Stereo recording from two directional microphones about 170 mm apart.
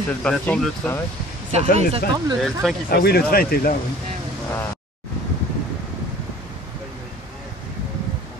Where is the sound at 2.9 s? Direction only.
65° left (ahead or behind).